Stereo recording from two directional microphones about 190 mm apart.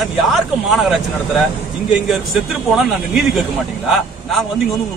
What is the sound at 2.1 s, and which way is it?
Speech, centre (ahead or behind).